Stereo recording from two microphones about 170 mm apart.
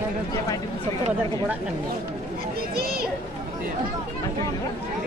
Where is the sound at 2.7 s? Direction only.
65° right (ahead or behind).